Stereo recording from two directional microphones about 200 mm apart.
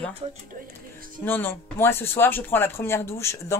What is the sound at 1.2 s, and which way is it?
Speech, 10° left (ahead or behind).